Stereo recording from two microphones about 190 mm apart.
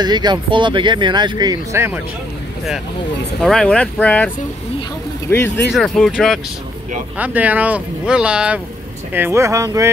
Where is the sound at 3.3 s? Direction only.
Centre (ahead or behind).